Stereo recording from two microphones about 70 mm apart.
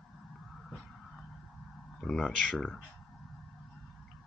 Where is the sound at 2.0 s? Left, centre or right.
Centre.